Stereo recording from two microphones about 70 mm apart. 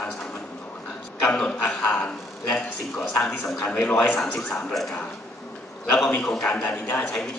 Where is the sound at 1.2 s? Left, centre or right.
Centre.